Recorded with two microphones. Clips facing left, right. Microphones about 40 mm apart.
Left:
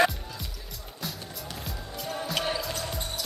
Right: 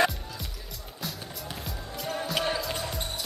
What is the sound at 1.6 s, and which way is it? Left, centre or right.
Music, centre.